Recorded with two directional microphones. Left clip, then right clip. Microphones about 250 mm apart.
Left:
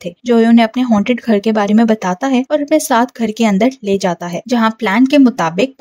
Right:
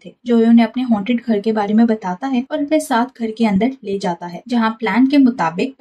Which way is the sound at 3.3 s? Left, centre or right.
Left.